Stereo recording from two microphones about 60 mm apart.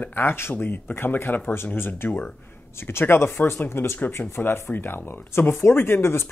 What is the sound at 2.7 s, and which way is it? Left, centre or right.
Speech, left.